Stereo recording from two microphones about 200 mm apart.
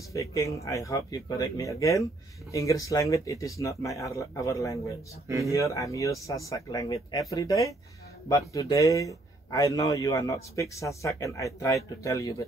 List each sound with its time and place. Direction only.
0.1 s a man's voice: 15° left (ahead or behind)